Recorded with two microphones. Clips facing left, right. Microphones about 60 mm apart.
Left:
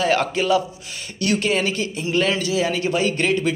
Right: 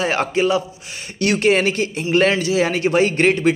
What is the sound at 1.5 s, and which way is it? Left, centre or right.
Music, right.